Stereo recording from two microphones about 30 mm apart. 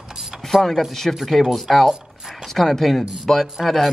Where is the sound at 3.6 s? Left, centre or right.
Centre.